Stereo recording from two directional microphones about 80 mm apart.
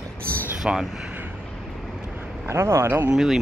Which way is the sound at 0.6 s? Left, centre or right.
Centre.